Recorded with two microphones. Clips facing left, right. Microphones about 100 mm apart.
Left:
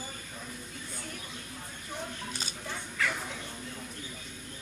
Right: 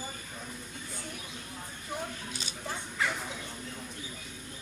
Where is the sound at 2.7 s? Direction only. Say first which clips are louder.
Right 1 dB; 25° right (ahead or behind).